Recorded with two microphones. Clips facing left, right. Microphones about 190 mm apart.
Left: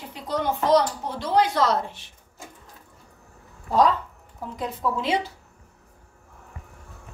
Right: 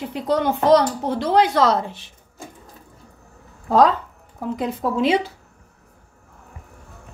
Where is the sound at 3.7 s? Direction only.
90° right.